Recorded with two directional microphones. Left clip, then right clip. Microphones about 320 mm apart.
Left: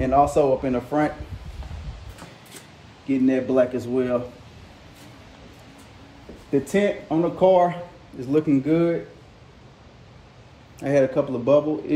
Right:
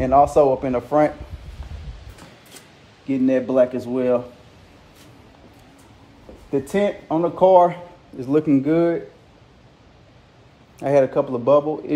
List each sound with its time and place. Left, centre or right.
0.0 s a man's voice: centre
3.1 s speech: centre
6.5 s a man's voice: centre
10.8 s a man's voice: centre